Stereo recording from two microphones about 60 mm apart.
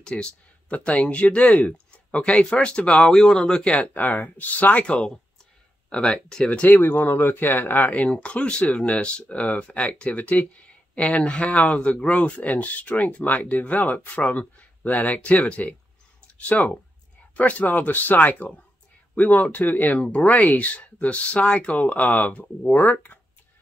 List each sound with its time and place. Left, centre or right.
0.0 s speech: centre
3.8 s speech: left; by 6.6 s centre
6.6 s speech: left